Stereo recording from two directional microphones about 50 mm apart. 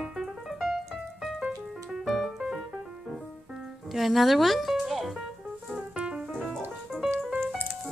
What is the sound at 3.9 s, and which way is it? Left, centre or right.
Music, centre.